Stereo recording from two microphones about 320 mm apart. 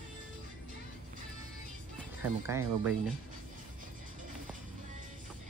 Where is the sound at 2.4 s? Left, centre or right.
Centre.